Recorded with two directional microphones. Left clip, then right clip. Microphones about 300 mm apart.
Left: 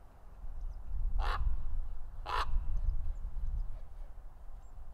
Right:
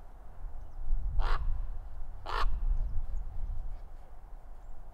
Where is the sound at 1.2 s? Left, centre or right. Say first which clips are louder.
Even; centre.